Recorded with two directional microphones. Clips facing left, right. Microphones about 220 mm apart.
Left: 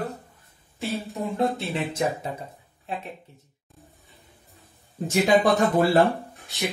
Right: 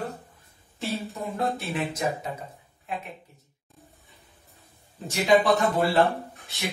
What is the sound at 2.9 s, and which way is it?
Speech, 30° left (ahead or behind).